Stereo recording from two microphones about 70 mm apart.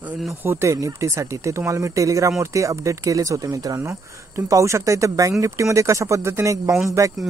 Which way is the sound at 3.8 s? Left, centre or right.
Right.